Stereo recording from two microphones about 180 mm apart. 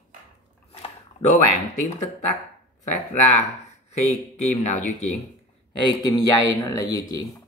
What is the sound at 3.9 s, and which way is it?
Speech, 40° left (ahead or behind).